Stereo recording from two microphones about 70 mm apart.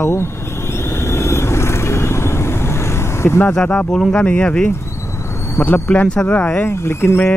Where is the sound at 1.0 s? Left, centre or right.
Left.